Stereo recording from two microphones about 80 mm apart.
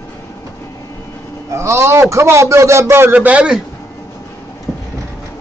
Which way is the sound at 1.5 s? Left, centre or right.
Right.